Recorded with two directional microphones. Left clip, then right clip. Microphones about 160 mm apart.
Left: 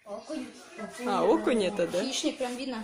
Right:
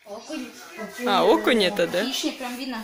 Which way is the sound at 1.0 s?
Centre (ahead or behind).